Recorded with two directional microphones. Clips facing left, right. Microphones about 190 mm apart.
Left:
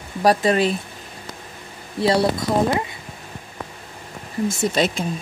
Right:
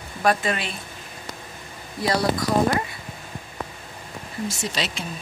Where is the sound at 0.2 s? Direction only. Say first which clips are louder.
Left 6 dB; 35° left (ahead or behind).